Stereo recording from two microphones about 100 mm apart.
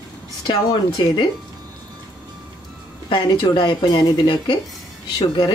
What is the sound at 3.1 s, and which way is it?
Speech, 50° left (ahead or behind).